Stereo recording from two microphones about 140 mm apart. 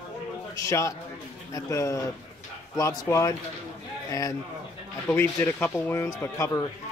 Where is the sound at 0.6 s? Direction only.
20° left (ahead or behind).